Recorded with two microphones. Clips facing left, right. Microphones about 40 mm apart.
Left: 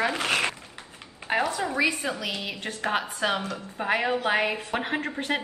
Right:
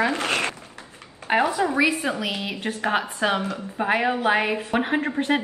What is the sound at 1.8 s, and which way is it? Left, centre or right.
Speech, right.